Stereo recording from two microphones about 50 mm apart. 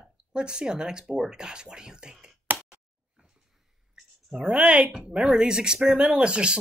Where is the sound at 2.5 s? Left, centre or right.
Right.